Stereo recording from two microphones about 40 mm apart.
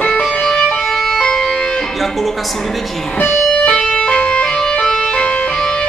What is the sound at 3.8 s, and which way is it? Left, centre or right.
Music, centre.